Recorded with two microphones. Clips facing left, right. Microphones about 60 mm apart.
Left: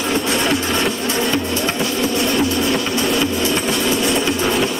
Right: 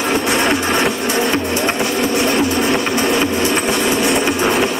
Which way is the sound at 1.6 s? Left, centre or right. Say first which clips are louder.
Right 2 dB; right.